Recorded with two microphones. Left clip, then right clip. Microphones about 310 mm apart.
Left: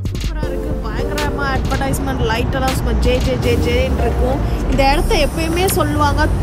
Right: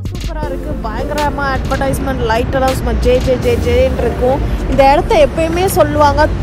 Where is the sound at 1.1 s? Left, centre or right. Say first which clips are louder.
Right 5 dB; centre.